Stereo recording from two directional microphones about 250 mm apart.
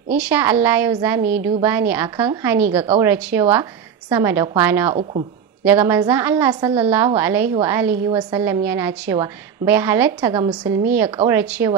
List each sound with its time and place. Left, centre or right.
0.1 s a woman's voice: centre